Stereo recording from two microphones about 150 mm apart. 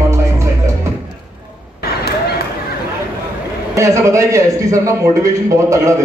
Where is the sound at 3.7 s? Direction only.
20° right (ahead or behind).